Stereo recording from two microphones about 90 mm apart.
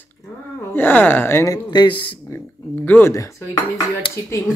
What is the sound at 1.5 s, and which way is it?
Speech, 55° left (ahead or behind).